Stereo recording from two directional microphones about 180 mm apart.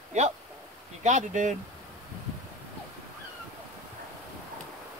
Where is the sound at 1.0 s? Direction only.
40° right (ahead or behind).